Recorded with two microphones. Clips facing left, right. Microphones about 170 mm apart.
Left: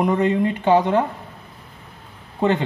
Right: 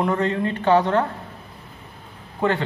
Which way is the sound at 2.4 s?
20° left (ahead or behind).